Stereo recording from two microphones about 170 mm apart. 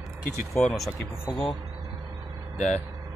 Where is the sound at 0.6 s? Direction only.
5° left (ahead or behind).